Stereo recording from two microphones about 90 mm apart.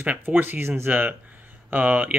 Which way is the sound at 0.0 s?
20° right (ahead or behind).